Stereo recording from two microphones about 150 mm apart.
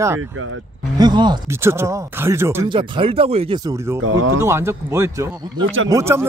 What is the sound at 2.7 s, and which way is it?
Speech, 35° right (ahead or behind).